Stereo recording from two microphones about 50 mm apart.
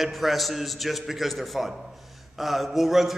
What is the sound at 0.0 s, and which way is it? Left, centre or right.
A man's voice, centre.